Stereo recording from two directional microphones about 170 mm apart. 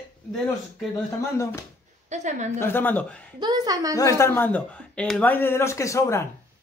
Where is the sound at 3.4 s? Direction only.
25° right (ahead or behind).